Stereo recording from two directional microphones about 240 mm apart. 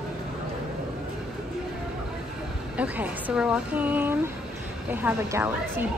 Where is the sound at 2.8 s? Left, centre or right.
Centre.